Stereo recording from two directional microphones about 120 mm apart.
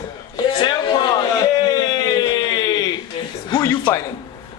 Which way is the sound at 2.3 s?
35° left (ahead or behind).